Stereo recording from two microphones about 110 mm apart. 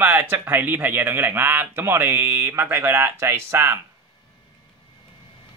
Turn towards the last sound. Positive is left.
turn(degrees=-25)  # may be behind; listen again after turning